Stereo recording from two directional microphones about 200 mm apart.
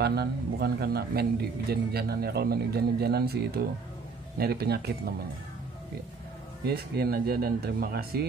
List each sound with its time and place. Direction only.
0.0 s speech: 55° right (ahead or behind)
6.6 s speech: 50° right (ahead or behind)